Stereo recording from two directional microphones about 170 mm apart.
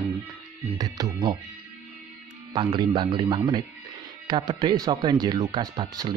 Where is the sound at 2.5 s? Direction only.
30° right (ahead or behind).